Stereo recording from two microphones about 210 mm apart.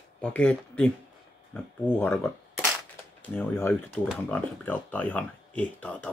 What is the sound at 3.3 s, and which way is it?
Speech, 10° left (ahead or behind).